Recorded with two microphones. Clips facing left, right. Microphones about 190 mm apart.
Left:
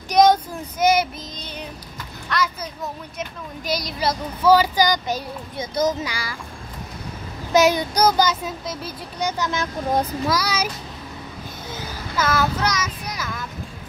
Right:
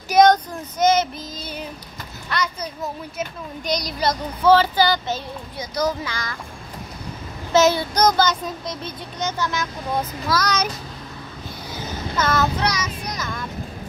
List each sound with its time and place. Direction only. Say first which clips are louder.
0.1 s speech: right 1 dB; 5° left (ahead or behind)
2.2 s a child's voice: left 1 dB; centre (ahead or behind)
7.5 s speech: even; 15° left (ahead or behind)
9.4 s a child's voice: right 1 dB; 25° left (ahead or behind)
10.3 s speech: right 5 dB; 10° left (ahead or behind)
12.2 s speech: even; 5° left (ahead or behind)